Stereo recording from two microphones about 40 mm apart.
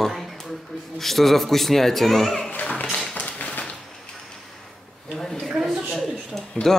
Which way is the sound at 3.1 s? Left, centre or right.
Left.